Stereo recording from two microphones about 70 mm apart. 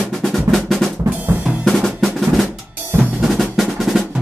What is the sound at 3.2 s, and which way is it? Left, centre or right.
Drum roll, centre.